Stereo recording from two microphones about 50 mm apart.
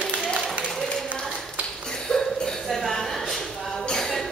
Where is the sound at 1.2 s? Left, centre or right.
Centre.